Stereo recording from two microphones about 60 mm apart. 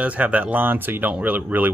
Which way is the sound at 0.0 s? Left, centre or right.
Right.